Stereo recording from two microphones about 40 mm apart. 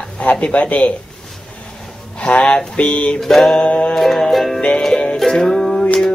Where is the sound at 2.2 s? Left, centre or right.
Left.